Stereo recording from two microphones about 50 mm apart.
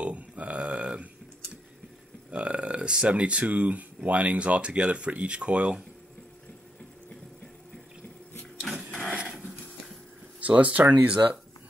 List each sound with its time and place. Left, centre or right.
0.0 s a sound: right
2.3 s speech: right
9.1 s dog: right
10.4 s speech: right